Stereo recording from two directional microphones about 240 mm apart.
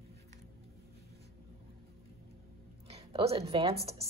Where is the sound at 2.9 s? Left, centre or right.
Right.